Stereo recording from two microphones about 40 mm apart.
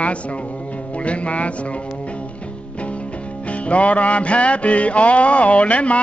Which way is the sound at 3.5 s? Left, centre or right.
Left.